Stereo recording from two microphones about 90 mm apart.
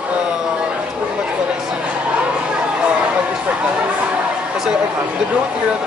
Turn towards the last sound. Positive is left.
turn(degrees=-10)  # may be behind; listen again after turning